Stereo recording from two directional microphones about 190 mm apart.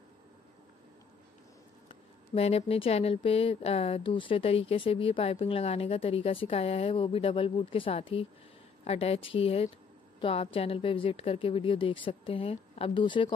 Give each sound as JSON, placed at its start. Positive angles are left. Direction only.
{"t": 2.3, "sound": "a woman's voice", "side_deg": 30}